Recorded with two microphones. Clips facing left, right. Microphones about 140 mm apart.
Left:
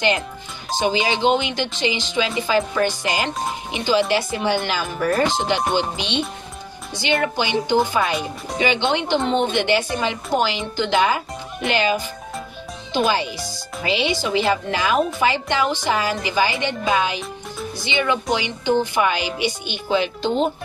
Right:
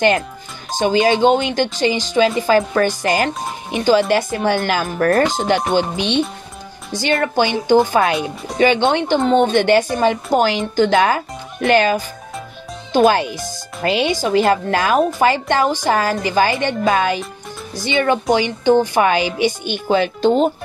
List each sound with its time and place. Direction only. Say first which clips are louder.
0.7 s a woman's voice: right 6 dB; 50° right (ahead or behind)
7.3 s a woman's voice: right 9 dB; 50° right (ahead or behind)
8.1 s speech: right 4 dB; centre (ahead or behind)
8.5 s a woman's voice: right 6 dB; 45° right (ahead or behind)
18.3 s a woman's voice: right 8 dB; 45° right (ahead or behind)